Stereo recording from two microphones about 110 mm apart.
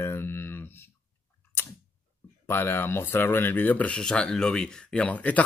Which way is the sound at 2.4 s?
20° left (ahead or behind).